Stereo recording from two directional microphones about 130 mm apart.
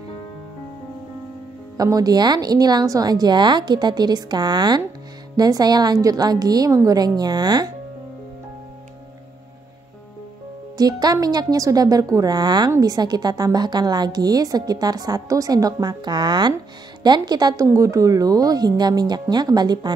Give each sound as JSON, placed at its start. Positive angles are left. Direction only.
{"t": 1.8, "sound": "speech", "side_deg": -30}
{"t": 10.8, "sound": "a woman's voice", "side_deg": -30}